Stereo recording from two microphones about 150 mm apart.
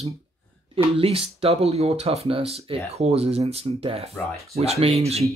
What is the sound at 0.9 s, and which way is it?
Speech, 40° right (ahead or behind).